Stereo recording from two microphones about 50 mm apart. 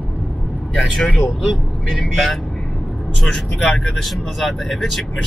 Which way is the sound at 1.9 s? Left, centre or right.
Centre.